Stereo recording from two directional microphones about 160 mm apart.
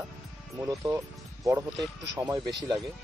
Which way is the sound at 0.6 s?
20° right (ahead or behind).